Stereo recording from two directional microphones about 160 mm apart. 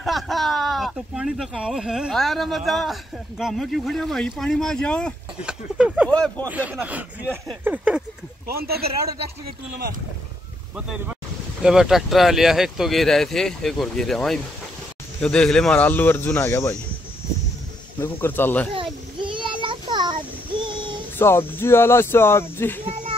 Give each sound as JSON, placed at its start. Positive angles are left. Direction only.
{"t": 0.0, "sound": "speech", "side_deg": 0}
{"t": 5.4, "sound": "speech", "side_deg": -5}
{"t": 6.0, "sound": "speech", "side_deg": 5}
{"t": 6.5, "sound": "speech", "side_deg": -10}
{"t": 8.5, "sound": "speech", "side_deg": -75}
{"t": 11.6, "sound": "speech", "side_deg": -5}
{"t": 18.0, "sound": "speech", "side_deg": 15}
{"t": 19.2, "sound": "child singing", "side_deg": -30}
{"t": 20.6, "sound": "a sound", "side_deg": -30}
{"t": 21.2, "sound": "speech", "side_deg": 15}